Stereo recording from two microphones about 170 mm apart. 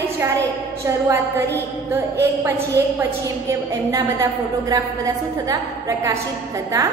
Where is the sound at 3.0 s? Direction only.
20° right (ahead or behind).